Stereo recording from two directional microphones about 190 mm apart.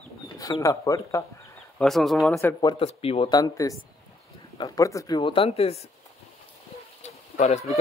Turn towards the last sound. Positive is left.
turn(degrees=35)  # may be behind; listen again after turning